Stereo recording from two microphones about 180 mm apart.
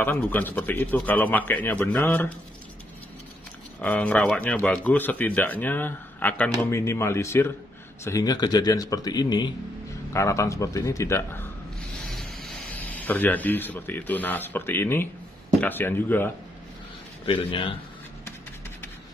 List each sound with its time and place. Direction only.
0.0 s speech: 10° left (ahead or behind)
3.8 s speech: 10° left (ahead or behind)
12.1 s speech: centre (ahead or behind)
17.3 s speech: 25° left (ahead or behind)